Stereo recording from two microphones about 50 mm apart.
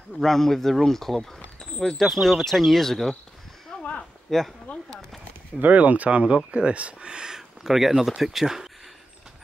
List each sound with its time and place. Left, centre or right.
0.2 s speech: centre
3.7 s a sound: centre
4.3 s speech: centre
5.6 s speech: right; by 8.6 s centre